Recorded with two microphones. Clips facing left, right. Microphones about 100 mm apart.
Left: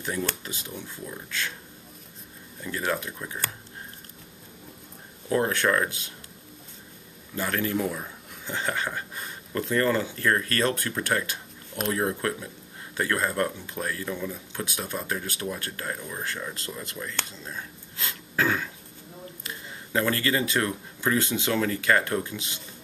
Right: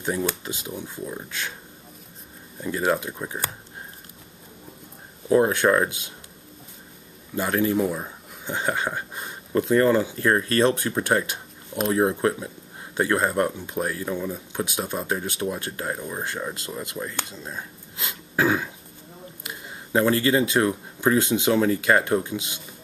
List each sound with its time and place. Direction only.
0.0 s speech: 20° right (ahead or behind)
2.6 s speech: 20° right (ahead or behind)
5.3 s speech: 20° right (ahead or behind)
7.3 s speech: 20° right (ahead or behind)